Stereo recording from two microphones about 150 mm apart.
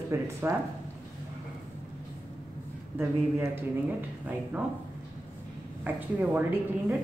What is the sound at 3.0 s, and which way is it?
Speech, 15° right (ahead or behind).